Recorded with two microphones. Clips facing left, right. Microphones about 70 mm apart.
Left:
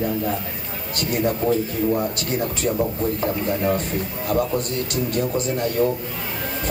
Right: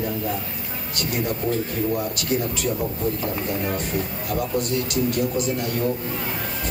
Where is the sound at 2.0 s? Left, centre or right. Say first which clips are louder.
Left 1 dB; left.